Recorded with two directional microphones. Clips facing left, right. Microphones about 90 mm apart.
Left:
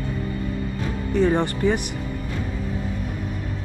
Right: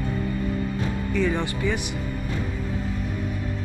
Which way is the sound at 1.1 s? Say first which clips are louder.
Left 6 dB; 40° left (ahead or behind).